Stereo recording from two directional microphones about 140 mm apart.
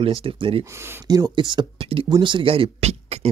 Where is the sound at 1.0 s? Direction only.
25° right (ahead or behind); by 3.2 s 50° right (ahead or behind).